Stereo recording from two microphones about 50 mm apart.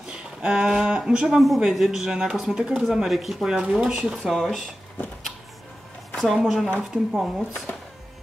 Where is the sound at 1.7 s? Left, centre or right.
Centre.